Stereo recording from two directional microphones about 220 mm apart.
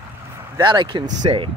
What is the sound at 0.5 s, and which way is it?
Speech, 20° right (ahead or behind).